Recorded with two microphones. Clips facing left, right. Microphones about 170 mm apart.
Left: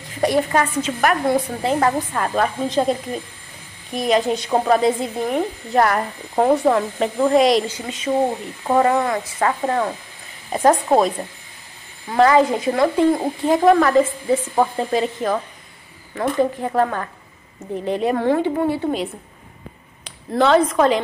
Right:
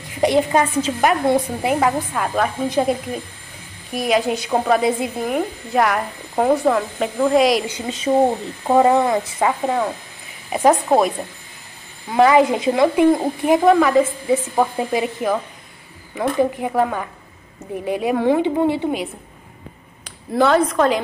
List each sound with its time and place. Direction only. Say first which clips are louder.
0.2 s a woman's voice: right 2 dB; 20° right (ahead or behind)
1.6 s speech: even; 10° right (ahead or behind)
7.6 s speech: right 2 dB; 20° right (ahead or behind)
13.7 s speech: left 1 dB; centre (ahead or behind); by 18.9 s 20° right (ahead or behind)
20.3 s speech: even; centre (ahead or behind)